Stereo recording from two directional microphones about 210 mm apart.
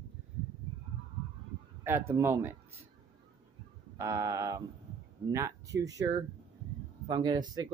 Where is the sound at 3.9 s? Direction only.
15° right (ahead or behind).